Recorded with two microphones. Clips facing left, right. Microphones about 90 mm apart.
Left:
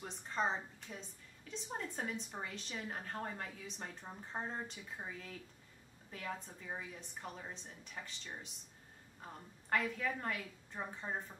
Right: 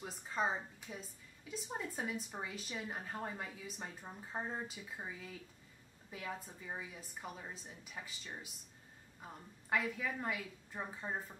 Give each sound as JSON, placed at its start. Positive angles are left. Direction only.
{"t": 0.0, "sound": "speech", "side_deg": -5}